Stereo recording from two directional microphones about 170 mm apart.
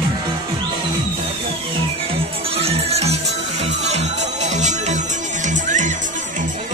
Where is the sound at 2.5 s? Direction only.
35° right (ahead or behind).